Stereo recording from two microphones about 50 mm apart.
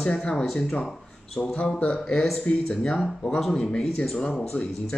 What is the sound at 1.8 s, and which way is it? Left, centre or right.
Speech, left.